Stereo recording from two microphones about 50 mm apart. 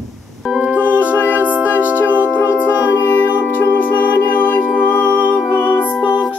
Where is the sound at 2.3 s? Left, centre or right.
Left.